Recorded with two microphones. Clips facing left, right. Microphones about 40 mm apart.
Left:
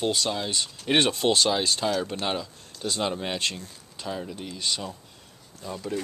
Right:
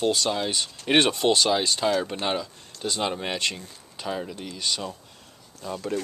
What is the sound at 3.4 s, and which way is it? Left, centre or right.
Speech, centre.